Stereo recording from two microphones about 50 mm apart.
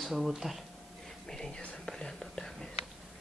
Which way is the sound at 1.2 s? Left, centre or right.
Centre.